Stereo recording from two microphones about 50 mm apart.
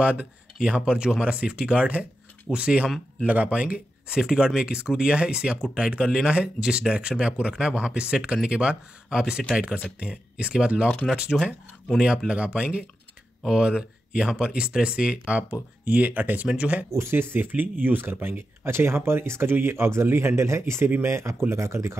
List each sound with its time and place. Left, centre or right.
0.0 s speech: right
4.2 s speech: centre
16.9 s speech: right